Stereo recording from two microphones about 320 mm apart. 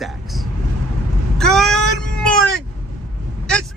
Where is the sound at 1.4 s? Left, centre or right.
Centre.